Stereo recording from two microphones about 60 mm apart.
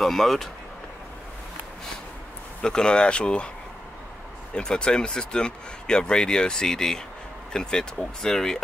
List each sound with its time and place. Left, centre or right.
0.0 s speech: centre
2.6 s speech: centre
4.6 s speech: centre